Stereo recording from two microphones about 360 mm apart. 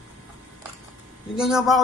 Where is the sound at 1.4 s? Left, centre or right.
Centre.